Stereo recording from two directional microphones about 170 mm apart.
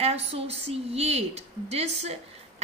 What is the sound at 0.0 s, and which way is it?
Speech, 40° right (ahead or behind).